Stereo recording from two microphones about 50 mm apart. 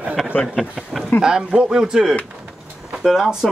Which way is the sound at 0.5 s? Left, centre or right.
Centre.